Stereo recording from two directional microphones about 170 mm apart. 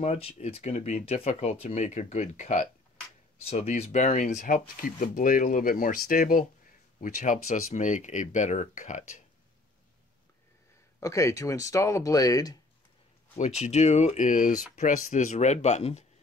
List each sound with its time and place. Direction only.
0.0 s speech: 40° left (ahead or behind)
11.0 s speech: 20° left (ahead or behind)
13.4 s speech: 40° left (ahead or behind)